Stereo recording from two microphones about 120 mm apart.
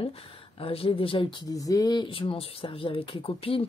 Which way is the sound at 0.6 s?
50° left (ahead or behind).